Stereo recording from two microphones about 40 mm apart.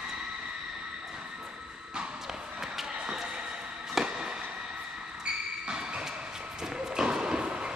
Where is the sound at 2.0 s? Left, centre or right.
Centre.